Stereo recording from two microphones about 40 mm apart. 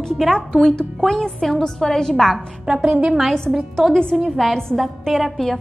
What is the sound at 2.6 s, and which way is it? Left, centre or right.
Speech, right.